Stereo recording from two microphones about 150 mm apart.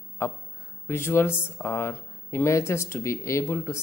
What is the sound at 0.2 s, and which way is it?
A man's voice, 20° left (ahead or behind).